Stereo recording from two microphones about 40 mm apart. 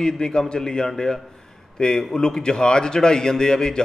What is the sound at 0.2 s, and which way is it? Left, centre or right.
A man's voice, centre.